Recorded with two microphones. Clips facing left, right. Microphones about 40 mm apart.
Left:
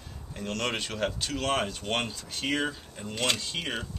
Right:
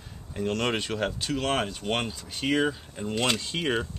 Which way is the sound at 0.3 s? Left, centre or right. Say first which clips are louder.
Right 4 dB; centre.